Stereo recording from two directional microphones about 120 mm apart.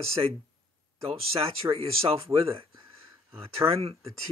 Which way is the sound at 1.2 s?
55° right (ahead or behind).